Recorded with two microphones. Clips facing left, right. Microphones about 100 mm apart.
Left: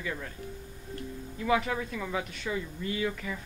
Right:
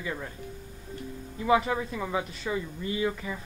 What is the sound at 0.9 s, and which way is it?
Music, 15° right (ahead or behind).